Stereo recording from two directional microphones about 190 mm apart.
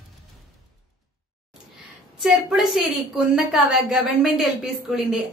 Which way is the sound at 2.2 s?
Centre (ahead or behind).